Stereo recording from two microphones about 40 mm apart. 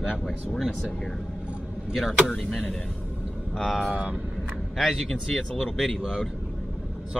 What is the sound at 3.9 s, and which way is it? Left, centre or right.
Speech, right.